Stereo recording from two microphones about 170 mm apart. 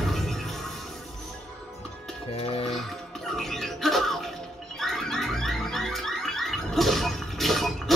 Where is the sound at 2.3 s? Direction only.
35° left (ahead or behind).